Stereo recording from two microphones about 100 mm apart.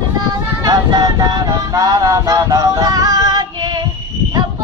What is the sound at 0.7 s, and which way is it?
Vehicle, 40° right (ahead or behind).